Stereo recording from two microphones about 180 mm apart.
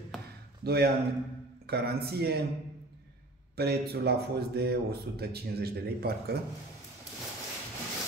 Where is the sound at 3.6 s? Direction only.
65° right (ahead or behind).